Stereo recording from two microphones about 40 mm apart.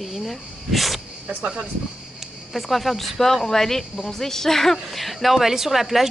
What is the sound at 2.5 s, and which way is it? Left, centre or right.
Speech, centre.